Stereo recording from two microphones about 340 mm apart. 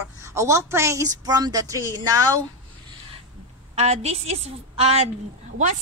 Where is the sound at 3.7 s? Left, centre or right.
Centre.